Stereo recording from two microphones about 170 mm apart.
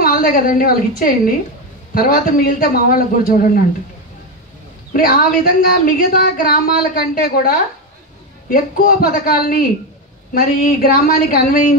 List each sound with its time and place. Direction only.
0.0 s speech: 60° left (ahead or behind)
4.9 s speech: 60° left (ahead or behind)